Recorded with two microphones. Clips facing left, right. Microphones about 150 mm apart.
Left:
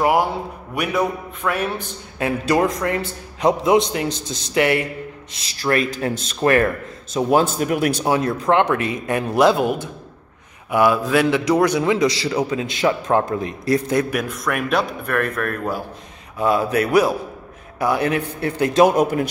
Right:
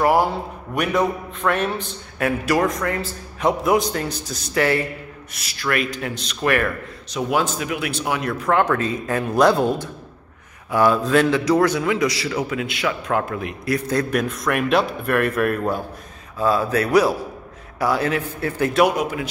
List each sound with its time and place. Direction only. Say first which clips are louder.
0.7 s a man's voice: right 1 dB; 10° left (ahead or behind)
2.1 s a man's voice: left 1 dB; 25° left (ahead or behind)
5.4 s a man's voice: left 3 dB; 35° left (ahead or behind)
8.0 s a man's voice: left 4 dB; 30° left (ahead or behind)
14.1 s speech: right 2 dB; centre (ahead or behind)
16.3 s a man's voice: left 1 dB; 20° left (ahead or behind)
18.9 s speech: left 5 dB; 45° left (ahead or behind)